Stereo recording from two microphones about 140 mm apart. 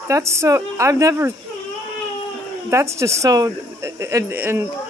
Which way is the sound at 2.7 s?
20° right (ahead or behind).